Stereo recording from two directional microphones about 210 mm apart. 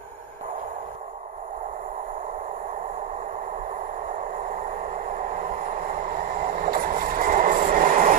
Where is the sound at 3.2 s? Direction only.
35° right (ahead or behind).